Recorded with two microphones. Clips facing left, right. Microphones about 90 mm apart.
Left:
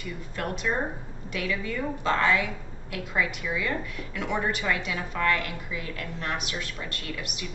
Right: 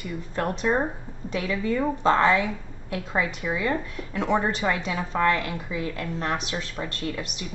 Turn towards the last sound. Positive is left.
turn(degrees=-30)  # may be behind; listen again after turning